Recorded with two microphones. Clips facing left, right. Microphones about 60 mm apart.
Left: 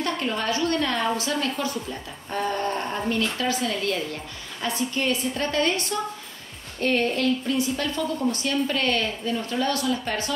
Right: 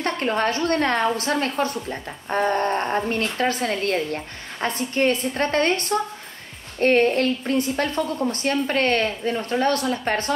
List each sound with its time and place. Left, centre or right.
0.0 s a woman's voice: right